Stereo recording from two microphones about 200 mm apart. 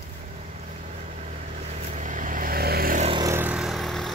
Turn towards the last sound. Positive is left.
turn(degrees=0)  # may be behind; listen again after turning